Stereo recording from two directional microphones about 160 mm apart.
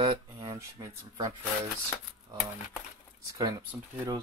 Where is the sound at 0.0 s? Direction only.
25° right (ahead or behind).